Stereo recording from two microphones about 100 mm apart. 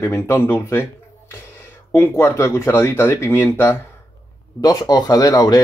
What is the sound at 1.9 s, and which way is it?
Speech, 20° left (ahead or behind).